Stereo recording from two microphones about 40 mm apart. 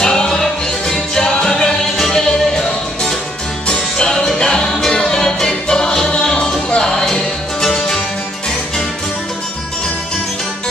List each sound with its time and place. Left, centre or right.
0.0 s music: centre